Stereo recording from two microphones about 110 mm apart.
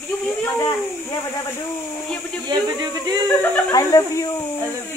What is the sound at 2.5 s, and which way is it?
Speech, 40° right (ahead or behind).